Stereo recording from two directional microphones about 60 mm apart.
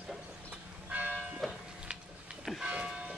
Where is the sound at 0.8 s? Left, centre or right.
Right.